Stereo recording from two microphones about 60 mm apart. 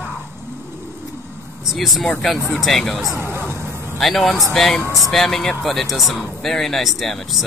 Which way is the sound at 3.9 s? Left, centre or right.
Centre.